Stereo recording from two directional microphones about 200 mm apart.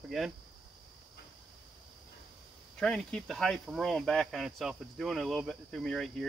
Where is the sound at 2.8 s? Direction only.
5° left (ahead or behind).